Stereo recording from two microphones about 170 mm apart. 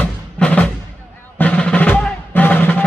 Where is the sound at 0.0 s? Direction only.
10° left (ahead or behind).